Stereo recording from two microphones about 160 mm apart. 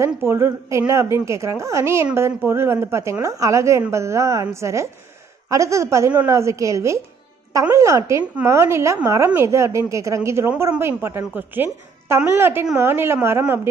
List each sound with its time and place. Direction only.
0.0 s a woman's voice: 15° right (ahead or behind)